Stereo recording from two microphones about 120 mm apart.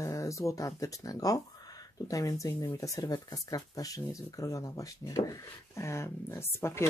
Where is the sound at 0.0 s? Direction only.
25° left (ahead or behind).